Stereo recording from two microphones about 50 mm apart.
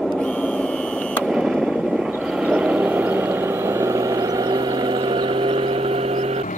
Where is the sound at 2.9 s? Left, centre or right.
Right.